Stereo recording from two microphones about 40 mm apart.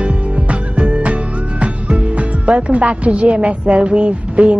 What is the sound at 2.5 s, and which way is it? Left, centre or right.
A woman's voice, right.